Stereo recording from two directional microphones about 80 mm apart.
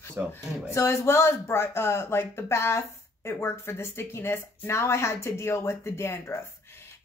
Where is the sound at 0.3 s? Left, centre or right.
Left.